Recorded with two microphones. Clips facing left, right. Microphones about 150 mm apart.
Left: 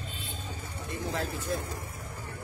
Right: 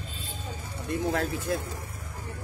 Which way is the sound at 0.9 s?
55° right (ahead or behind).